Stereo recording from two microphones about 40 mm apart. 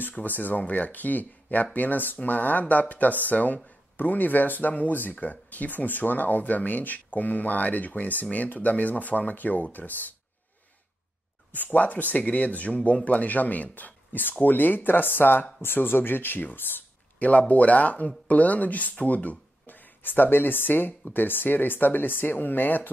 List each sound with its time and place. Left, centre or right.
0.2 s speech: left
11.5 s speech: left
17.2 s speech: left